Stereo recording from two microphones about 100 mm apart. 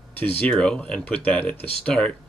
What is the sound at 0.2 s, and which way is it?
Speech, 15° left (ahead or behind).